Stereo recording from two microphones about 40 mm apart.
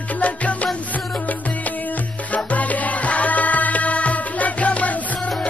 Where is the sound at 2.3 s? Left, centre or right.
Left.